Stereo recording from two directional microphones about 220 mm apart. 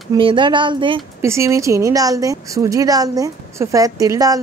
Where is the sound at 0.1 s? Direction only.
20° right (ahead or behind).